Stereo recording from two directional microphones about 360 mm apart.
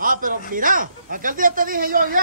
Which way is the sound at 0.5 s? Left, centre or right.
Right.